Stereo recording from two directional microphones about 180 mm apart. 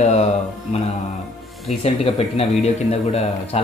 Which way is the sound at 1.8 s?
35° left (ahead or behind).